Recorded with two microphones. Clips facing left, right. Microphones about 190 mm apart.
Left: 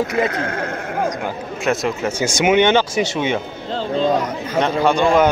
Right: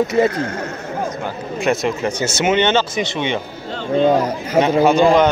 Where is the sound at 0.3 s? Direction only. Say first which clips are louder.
Even; 55° left (ahead or behind).